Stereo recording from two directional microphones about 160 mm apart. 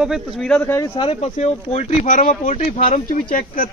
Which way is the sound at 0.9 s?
40° left (ahead or behind).